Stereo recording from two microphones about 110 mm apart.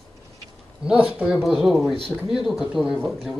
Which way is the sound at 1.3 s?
Centre (ahead or behind).